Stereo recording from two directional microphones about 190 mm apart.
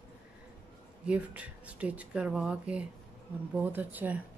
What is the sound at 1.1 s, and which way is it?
Speech, 5° right (ahead or behind).